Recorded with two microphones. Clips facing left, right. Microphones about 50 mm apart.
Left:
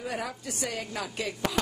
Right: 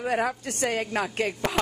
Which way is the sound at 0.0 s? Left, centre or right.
Right.